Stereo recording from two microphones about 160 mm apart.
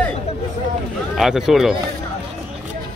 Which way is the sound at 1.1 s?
Centre (ahead or behind).